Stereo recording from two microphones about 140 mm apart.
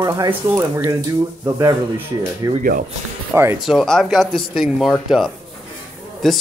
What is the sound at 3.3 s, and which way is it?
Speech, 15° right (ahead or behind).